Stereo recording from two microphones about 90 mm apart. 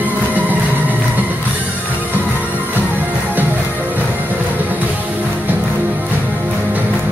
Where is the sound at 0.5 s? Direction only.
20° right (ahead or behind).